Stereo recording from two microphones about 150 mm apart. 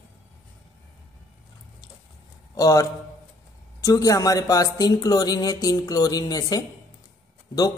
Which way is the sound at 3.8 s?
20° left (ahead or behind).